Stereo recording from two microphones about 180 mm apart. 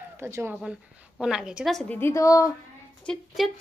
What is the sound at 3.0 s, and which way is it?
Speech, 5° left (ahead or behind).